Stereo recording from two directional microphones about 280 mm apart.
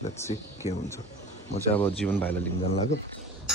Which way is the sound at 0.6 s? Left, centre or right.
Left.